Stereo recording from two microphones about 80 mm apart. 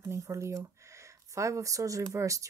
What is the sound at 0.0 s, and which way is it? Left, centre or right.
A woman's voice, right.